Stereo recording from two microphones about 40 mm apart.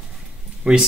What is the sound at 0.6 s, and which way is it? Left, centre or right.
Speech, centre.